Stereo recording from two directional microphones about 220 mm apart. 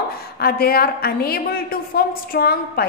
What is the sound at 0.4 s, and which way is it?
A woman's voice, 45° left (ahead or behind).